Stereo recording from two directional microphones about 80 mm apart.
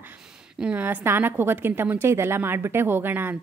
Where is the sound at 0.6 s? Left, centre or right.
Centre.